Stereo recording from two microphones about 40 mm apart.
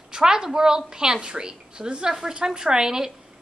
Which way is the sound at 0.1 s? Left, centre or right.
Centre.